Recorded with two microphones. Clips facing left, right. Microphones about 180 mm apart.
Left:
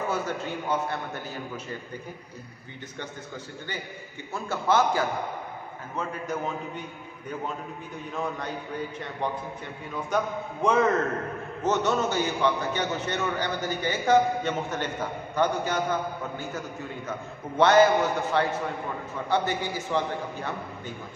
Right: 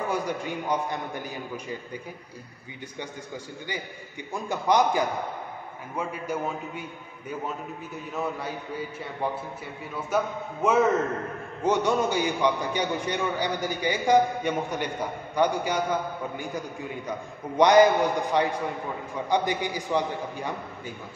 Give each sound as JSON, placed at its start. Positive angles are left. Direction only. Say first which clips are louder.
{"t": 0.1, "sound": "a man's voice", "louder": "right 1 dB", "side_deg": -15}
{"t": 4.3, "sound": "a man's voice", "louder": "right 1 dB", "side_deg": -15}